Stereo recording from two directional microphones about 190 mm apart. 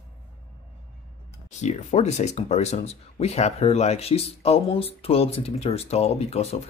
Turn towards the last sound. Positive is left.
turn(degrees=30)  # may be behind; listen again after turning